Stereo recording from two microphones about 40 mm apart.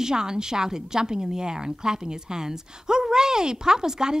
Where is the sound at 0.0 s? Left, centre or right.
Centre.